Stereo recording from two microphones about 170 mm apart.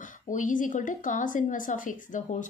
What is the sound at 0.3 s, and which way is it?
A woman's voice, 50° left (ahead or behind).